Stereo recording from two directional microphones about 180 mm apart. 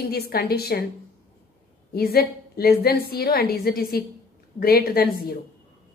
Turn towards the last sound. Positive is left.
turn(degrees=60)  # may be behind; listen again after turning